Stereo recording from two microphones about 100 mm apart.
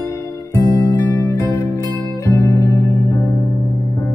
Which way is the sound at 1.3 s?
35° left (ahead or behind).